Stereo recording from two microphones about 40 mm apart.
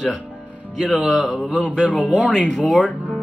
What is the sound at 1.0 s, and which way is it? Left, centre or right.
Speech, centre.